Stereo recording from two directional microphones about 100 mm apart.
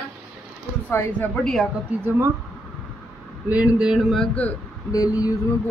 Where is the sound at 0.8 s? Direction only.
15° left (ahead or behind).